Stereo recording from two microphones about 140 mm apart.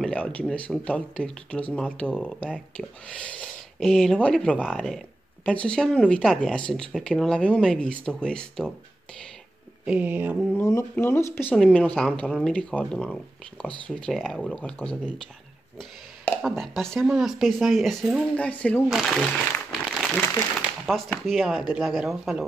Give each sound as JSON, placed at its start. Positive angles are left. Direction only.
{"t": 0.0, "sound": "speech", "side_deg": 10}
{"t": 9.8, "sound": "a sound", "side_deg": -10}
{"t": 10.5, "sound": "speech", "side_deg": 20}
{"t": 11.5, "sound": "speech", "side_deg": 10}
{"t": 16.4, "sound": "speech", "side_deg": 0}
{"t": 18.9, "sound": "a sound", "side_deg": 0}
{"t": 20.8, "sound": "speech", "side_deg": 5}